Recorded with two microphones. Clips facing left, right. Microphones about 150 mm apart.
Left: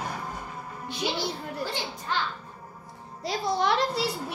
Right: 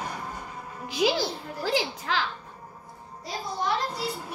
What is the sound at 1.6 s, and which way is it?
Speech, 90° right.